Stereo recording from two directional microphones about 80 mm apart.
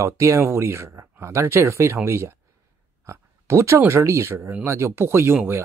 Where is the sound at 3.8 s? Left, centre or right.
Right.